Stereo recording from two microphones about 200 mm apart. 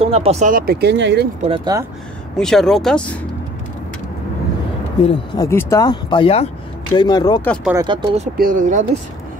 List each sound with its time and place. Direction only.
0.0 s speech: 30° right (ahead or behind); by 1.3 s 60° right (ahead or behind)
1.4 s speech: 30° right (ahead or behind)
2.3 s speech: 5° left (ahead or behind)
5.0 s speech: 20° left (ahead or behind)
7.7 s speech: 25° right (ahead or behind)
8.4 s speech: 45° right (ahead or behind)